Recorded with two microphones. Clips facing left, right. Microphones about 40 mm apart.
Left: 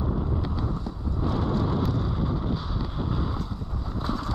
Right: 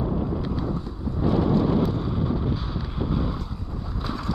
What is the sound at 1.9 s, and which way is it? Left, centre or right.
Vehicle, right.